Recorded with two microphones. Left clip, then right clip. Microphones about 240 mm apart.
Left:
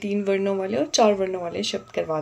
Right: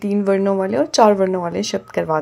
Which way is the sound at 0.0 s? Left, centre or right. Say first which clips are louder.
Right 6 dB; right.